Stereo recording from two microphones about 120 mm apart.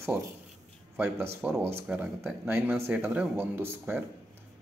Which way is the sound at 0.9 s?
20° right (ahead or behind).